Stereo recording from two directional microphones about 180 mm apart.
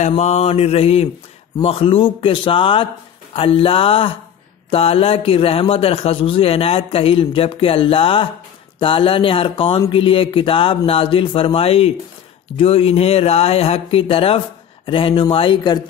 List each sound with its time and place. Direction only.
0.0 s a man's voice: 40° left (ahead or behind)